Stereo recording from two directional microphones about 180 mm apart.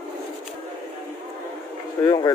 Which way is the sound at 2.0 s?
20° left (ahead or behind).